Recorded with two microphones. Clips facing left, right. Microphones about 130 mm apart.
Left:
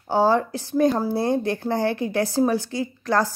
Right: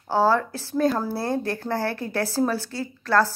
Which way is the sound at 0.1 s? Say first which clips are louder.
Left 1 dB; 15° left (ahead or behind).